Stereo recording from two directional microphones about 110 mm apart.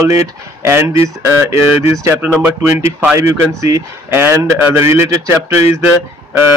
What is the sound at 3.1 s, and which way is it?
Speech, 25° right (ahead or behind).